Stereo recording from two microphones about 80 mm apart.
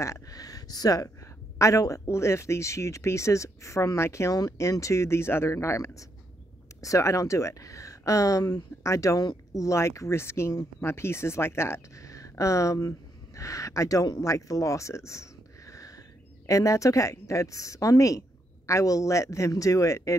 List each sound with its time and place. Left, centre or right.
0.0 s speech: left